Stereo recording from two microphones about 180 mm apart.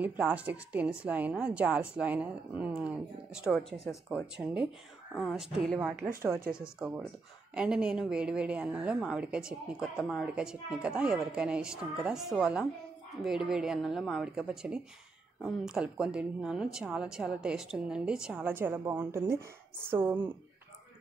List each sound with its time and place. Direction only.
0.0 s a woman's voice: 10° right (ahead or behind)
5.9 s speech: 50° right (ahead or behind)
6.6 s a woman's voice: 5° right (ahead or behind)